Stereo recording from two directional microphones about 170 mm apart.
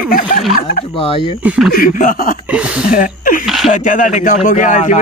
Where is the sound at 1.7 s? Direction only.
55° left (ahead or behind).